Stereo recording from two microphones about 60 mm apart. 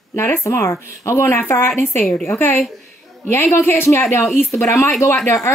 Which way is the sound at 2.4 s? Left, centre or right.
Left.